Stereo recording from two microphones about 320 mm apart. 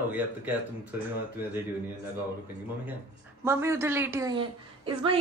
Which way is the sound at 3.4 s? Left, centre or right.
Centre.